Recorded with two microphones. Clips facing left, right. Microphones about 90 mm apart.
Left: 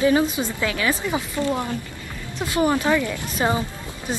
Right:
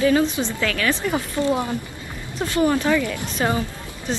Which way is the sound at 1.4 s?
15° right (ahead or behind).